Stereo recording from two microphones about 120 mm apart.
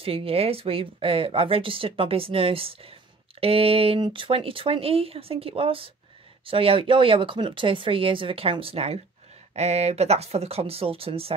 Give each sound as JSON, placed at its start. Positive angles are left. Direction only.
{"t": 0.0, "sound": "speech", "side_deg": -50}